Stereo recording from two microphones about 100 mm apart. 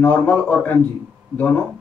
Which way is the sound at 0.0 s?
15° left (ahead or behind).